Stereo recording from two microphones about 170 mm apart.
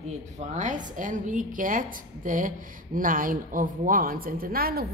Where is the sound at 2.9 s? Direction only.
55° right (ahead or behind).